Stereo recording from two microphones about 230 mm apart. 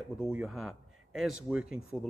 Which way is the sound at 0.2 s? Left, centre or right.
Centre.